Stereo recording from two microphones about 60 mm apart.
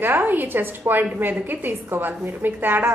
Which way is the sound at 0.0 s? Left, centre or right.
Right.